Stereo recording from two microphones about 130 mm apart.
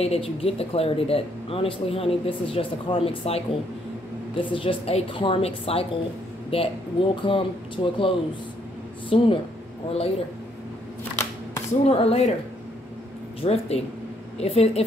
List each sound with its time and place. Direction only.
0.0 s speech: 50° left (ahead or behind)
9.1 s speech: 45° left (ahead or behind)
11.8 s speech: 50° left (ahead or behind)
13.4 s speech: 55° left (ahead or behind)